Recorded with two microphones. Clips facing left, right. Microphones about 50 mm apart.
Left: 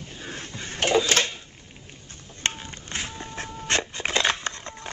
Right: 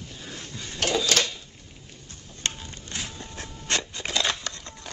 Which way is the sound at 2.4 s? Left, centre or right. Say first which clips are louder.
Left 3 dB; left.